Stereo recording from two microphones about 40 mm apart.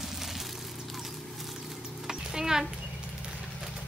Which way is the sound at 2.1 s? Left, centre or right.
Centre.